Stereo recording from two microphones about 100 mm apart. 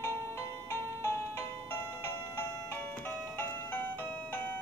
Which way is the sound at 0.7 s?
25° left (ahead or behind).